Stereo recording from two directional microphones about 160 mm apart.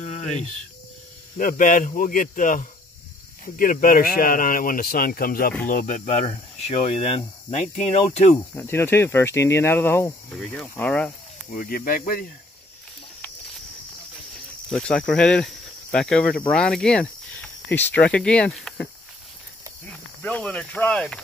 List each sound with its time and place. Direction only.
0.0 s cricket: 45° left (ahead or behind)
1.4 s speech: 55° left (ahead or behind)
8.5 s speech: 15° left (ahead or behind)
11.5 s speech: 65° left (ahead or behind)
14.7 s speech: 5° left (ahead or behind)
19.9 s speech: 10° left (ahead or behind)